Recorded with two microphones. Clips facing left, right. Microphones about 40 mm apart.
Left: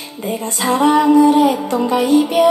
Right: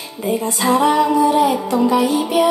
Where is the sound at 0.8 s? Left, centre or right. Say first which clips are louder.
Left 7 dB; left.